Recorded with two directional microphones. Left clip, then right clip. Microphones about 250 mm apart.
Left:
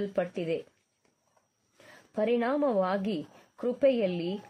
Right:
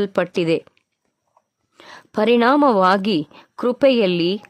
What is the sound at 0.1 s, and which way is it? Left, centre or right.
Speech, right.